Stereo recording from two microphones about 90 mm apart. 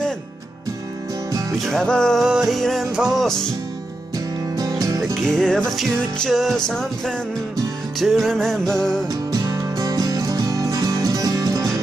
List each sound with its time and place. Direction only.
1.6 s music: 5° left (ahead or behind)
2.2 s music: 5° right (ahead or behind)
4.6 s music: 40° right (ahead or behind)
5.1 s music: 5° left (ahead or behind)
9.3 s music: 45° right (ahead or behind)